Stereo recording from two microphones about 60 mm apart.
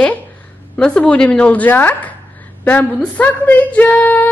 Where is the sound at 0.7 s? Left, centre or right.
Centre.